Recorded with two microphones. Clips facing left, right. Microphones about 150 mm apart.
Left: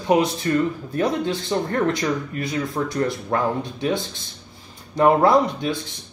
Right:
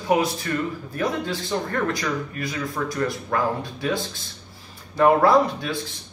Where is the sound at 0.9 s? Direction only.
25° left (ahead or behind).